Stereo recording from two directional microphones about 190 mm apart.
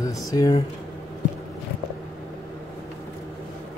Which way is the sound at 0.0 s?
20° left (ahead or behind).